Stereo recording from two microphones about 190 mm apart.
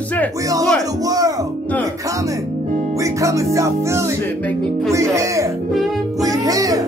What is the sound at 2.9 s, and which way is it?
Speech, 15° right (ahead or behind).